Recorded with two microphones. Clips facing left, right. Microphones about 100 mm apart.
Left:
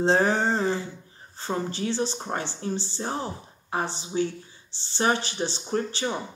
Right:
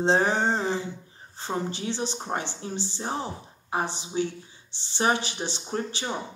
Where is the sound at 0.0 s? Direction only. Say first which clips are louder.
Left 1 dB; 20° right (ahead or behind).